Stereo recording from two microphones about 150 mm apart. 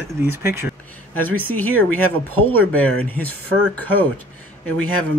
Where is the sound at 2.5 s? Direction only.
10° left (ahead or behind).